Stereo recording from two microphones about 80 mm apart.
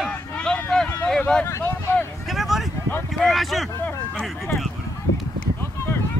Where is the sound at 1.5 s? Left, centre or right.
Left.